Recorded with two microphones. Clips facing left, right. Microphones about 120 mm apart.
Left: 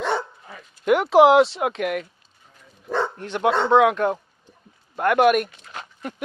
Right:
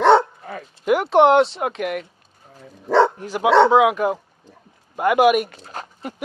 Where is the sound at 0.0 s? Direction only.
65° right (ahead or behind).